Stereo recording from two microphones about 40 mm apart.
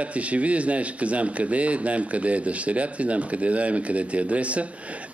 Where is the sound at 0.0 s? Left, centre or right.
Right.